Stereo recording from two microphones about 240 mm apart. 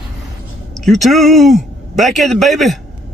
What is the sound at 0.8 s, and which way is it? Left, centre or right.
Speech, centre.